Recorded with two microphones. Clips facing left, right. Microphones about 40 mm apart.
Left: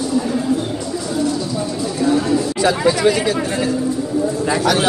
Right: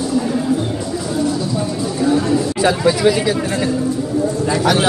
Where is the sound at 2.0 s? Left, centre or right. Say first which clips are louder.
Right 1 dB; centre.